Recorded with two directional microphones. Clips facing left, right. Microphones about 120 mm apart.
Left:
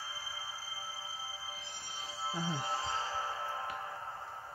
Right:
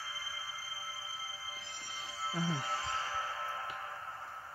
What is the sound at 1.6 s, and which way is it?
Music, 20° left (ahead or behind).